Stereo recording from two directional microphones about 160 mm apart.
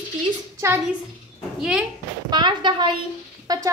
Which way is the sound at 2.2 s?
25° right (ahead or behind).